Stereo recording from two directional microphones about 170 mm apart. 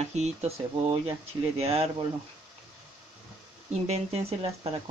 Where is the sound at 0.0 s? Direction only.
40° right (ahead or behind).